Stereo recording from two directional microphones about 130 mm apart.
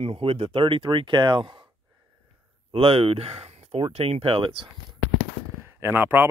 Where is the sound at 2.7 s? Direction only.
45° right (ahead or behind).